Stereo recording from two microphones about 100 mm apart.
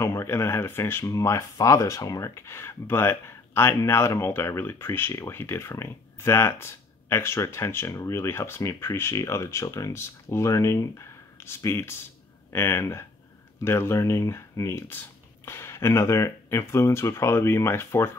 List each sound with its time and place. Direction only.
0.0 s speech: 30° left (ahead or behind)